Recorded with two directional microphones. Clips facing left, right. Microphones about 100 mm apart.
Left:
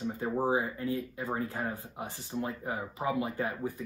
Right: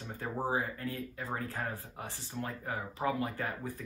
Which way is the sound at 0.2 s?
20° left (ahead or behind).